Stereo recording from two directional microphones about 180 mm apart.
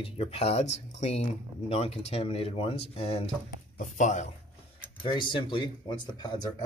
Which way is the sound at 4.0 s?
45° left (ahead or behind).